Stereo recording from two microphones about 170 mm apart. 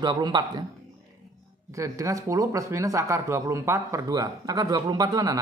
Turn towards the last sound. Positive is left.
turn(degrees=-20)  # may be behind; listen again after turning